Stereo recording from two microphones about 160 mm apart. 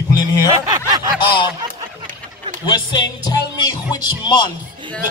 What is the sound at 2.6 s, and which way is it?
Speech, 25° left (ahead or behind).